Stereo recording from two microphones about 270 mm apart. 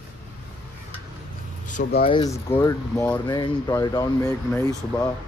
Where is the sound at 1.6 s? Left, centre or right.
Left; by 5.1 s centre.